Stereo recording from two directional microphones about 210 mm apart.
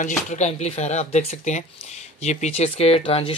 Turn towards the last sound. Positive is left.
turn(degrees=25)  # may be behind; listen again after turning